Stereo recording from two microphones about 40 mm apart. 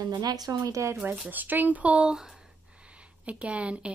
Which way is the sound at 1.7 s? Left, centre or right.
Right.